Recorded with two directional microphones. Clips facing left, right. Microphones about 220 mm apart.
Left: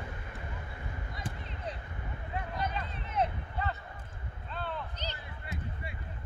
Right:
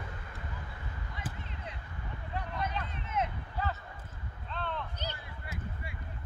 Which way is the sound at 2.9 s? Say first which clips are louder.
Left 5 dB; 35° left (ahead or behind).